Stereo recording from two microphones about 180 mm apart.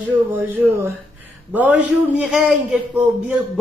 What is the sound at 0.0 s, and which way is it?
A woman's voice, 10° right (ahead or behind).